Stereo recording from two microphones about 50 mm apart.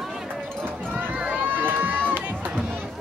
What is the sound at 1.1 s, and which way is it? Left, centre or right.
Run, right.